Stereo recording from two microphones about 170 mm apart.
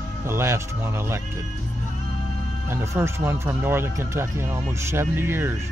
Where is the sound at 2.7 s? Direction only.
15° right (ahead or behind).